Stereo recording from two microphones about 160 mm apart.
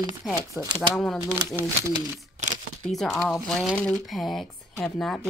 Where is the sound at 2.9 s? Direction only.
Centre (ahead or behind).